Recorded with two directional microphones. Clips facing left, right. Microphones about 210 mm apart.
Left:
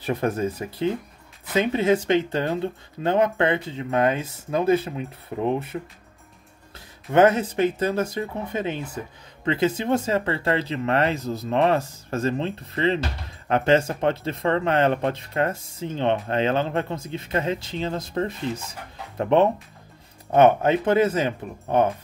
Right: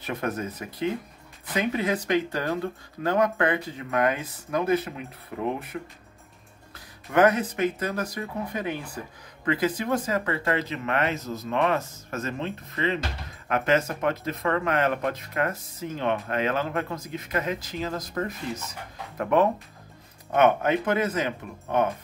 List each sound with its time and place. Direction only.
0.0 s speech: 30° left (ahead or behind)